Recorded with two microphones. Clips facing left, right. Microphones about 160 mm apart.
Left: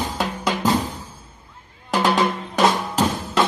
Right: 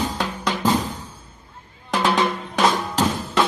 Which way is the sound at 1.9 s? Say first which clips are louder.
Left 1 dB; centre (ahead or behind).